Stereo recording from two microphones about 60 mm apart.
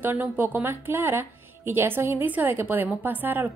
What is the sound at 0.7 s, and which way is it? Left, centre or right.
A woman's voice, right.